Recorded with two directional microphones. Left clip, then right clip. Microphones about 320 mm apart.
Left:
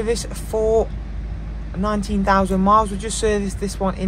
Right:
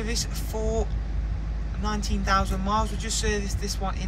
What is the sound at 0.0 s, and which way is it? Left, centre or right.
Speech, centre.